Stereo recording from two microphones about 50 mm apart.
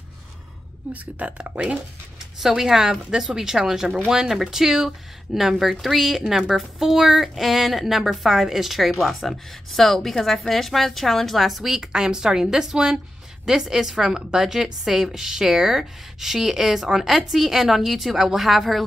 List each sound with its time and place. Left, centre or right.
0.9 s speech: right
2.4 s a woman's voice: centre